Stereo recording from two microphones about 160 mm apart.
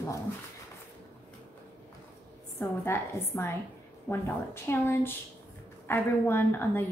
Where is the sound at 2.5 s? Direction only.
15° left (ahead or behind).